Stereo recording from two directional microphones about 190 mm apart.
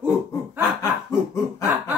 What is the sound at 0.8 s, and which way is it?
Snicker, 15° left (ahead or behind).